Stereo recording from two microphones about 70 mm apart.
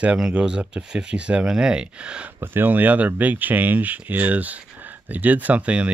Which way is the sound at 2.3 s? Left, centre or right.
Right.